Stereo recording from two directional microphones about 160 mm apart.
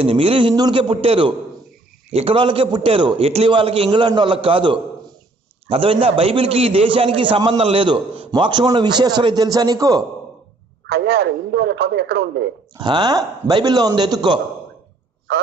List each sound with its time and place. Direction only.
0.0 s a man's voice: 35° right (ahead or behind)
10.9 s speech: 90° right
12.7 s a man's voice: 25° right (ahead or behind)